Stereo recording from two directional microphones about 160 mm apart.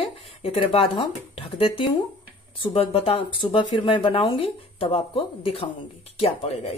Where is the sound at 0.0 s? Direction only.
35° left (ahead or behind).